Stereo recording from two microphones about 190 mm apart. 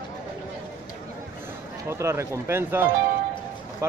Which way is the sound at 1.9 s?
15° right (ahead or behind).